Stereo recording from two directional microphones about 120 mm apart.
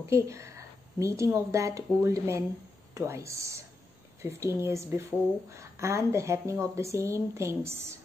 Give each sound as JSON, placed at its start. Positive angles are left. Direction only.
{"t": 0.1, "sound": "a woman's voice", "side_deg": -25}